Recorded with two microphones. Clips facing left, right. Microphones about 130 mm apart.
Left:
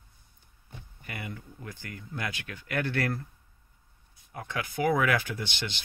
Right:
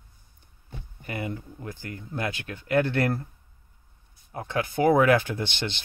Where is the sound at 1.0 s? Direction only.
30° right (ahead or behind).